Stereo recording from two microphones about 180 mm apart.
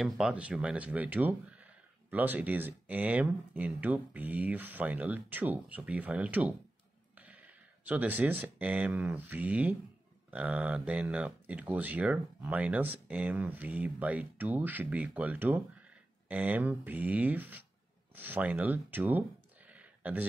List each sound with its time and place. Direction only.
0.0 s speech: 5° right (ahead or behind)